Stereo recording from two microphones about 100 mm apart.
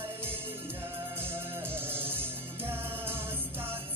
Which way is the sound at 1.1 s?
20° right (ahead or behind).